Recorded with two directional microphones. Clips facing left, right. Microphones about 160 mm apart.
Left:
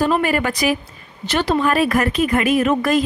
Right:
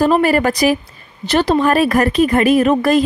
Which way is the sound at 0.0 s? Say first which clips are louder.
Right 5 dB; 40° right (ahead or behind).